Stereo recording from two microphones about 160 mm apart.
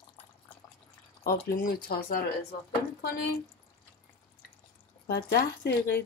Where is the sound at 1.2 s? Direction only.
70° left (ahead or behind).